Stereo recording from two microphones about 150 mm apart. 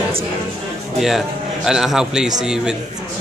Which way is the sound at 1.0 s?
Centre (ahead or behind).